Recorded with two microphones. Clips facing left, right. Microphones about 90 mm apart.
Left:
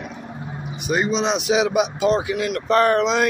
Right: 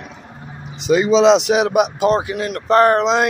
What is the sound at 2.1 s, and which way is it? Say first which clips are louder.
Speech: right 2 dB; 40° right (ahead or behind).